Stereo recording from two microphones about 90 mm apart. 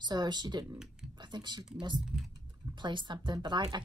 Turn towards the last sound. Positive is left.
turn(degrees=-60)  # may be behind; listen again after turning